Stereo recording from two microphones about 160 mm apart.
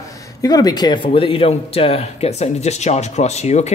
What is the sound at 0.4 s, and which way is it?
Speech, 25° left (ahead or behind).